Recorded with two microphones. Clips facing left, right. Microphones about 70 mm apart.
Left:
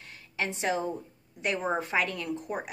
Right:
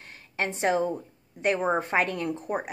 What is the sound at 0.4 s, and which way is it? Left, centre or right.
A woman's voice, right.